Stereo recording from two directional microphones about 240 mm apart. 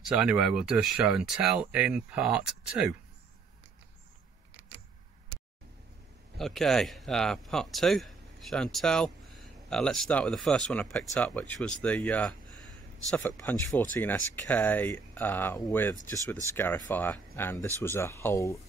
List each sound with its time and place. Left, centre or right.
0.1 s speech: centre
6.3 s speech: centre